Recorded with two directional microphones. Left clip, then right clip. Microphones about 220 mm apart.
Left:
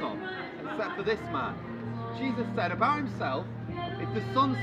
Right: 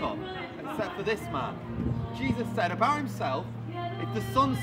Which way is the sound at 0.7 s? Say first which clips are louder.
Even; 15° right (ahead or behind).